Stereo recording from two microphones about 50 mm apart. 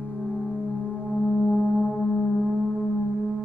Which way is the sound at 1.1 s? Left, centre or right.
Right.